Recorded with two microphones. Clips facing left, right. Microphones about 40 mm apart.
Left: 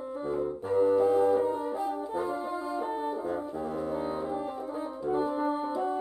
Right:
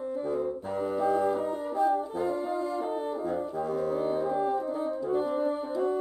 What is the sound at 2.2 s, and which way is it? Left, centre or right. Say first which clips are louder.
Music: right 3 dB; centre.